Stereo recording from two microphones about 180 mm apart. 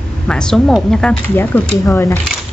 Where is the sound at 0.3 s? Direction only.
5° left (ahead or behind).